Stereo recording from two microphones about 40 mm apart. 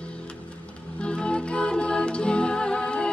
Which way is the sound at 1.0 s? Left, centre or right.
Left.